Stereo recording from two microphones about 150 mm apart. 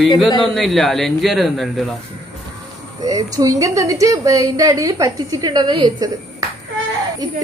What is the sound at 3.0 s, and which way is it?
A woman's voice, 25° right (ahead or behind).